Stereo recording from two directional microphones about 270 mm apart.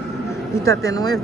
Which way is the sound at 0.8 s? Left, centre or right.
Centre.